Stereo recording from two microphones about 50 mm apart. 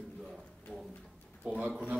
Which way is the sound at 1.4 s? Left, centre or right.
Right.